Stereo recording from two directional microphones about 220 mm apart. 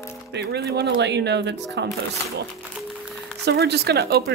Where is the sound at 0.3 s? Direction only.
50° right (ahead or behind).